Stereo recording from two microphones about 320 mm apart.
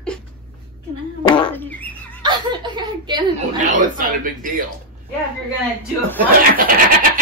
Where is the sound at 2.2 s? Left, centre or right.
Centre.